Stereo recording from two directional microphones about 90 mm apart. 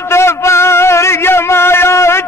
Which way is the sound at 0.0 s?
30° left (ahead or behind).